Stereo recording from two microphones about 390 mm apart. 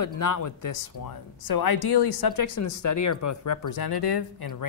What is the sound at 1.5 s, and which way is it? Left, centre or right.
Speech, left.